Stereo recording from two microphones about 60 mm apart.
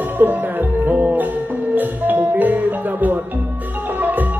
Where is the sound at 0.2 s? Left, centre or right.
Right.